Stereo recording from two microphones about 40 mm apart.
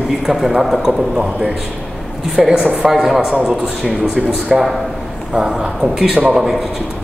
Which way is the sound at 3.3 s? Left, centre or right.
Right.